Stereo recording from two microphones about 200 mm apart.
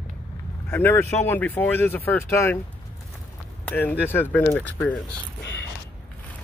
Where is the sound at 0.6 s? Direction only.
10° left (ahead or behind).